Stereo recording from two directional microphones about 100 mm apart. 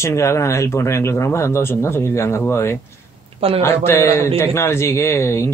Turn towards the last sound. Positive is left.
turn(degrees=25)  # may be behind; listen again after turning